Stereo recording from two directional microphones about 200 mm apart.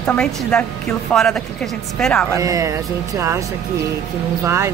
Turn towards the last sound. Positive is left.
turn(degrees=-15)  # may be behind; listen again after turning